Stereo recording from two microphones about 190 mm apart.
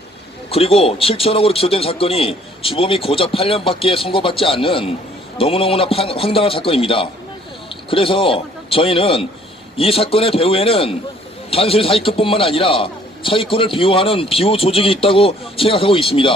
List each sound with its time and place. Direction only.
0.5 s a man's voice: 30° left (ahead or behind)